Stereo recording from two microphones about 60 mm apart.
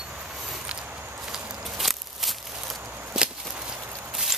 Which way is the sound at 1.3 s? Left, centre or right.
Centre.